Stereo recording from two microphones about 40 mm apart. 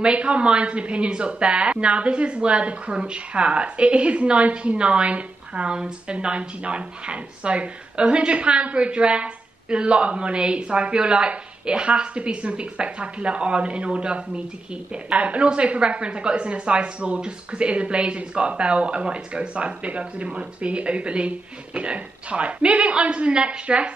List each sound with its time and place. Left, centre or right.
0.0 s speech: right